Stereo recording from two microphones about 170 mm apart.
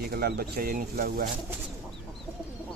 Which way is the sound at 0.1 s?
65° right (ahead or behind).